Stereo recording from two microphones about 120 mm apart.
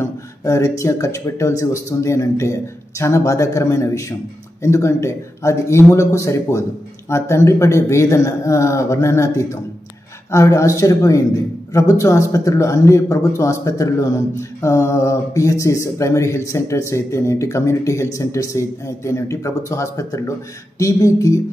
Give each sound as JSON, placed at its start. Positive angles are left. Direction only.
{"t": 0.0, "sound": "speech", "side_deg": 25}